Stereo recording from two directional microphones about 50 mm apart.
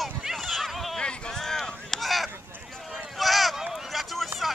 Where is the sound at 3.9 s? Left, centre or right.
Centre.